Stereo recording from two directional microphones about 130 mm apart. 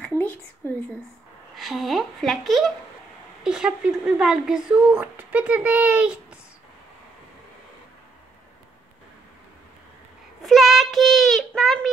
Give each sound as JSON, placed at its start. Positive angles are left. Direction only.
{"t": 1.6, "sound": "speech", "side_deg": 0}
{"t": 10.4, "sound": "child singing", "side_deg": 0}